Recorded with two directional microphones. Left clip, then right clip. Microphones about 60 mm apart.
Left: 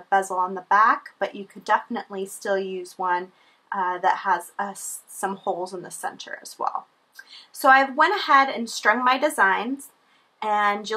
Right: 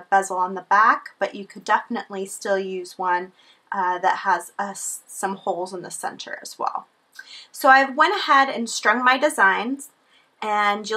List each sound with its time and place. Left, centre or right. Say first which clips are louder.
0.1 s speech: right 2 dB; right